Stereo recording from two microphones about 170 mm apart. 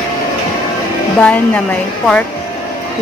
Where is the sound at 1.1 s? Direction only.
5° left (ahead or behind).